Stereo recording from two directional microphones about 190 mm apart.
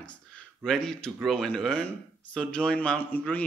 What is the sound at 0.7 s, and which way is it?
A man's voice, 5° left (ahead or behind).